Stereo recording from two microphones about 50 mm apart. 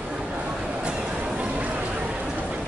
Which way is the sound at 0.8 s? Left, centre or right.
Centre.